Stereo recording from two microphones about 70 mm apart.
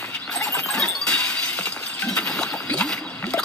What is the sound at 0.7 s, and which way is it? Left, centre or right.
Music, centre.